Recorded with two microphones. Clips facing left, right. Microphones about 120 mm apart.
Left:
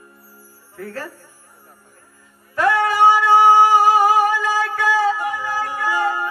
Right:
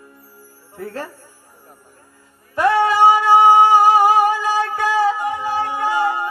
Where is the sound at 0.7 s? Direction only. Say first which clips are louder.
Right 2 dB; 20° right (ahead or behind).